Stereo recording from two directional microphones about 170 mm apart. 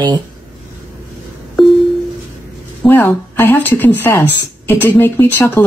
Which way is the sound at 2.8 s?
10° left (ahead or behind).